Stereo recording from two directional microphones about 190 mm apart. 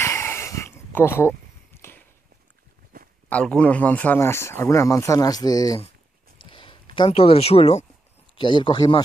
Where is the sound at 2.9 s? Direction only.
50° right (ahead or behind).